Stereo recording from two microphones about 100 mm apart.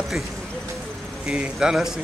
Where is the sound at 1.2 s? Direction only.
10° right (ahead or behind).